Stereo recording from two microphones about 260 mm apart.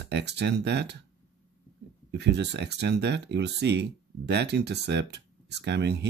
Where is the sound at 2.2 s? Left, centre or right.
Right.